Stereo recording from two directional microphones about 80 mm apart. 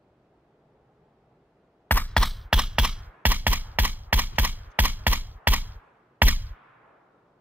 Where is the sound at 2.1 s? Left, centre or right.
Centre.